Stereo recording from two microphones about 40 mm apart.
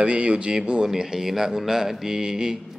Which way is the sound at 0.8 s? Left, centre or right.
Centre.